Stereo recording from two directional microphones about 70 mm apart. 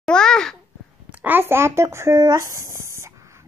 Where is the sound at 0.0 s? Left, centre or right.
Centre.